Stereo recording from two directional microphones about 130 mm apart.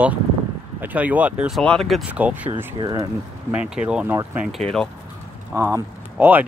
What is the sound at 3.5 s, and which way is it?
Speech, 10° right (ahead or behind).